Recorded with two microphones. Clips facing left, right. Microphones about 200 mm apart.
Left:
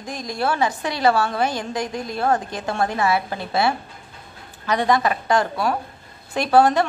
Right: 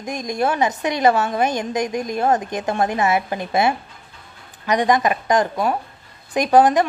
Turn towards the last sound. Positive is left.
turn(degrees=-15)  # may be behind; listen again after turning